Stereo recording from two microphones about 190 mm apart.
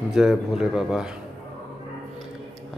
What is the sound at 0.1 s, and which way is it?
A man's voice, centre (ahead or behind).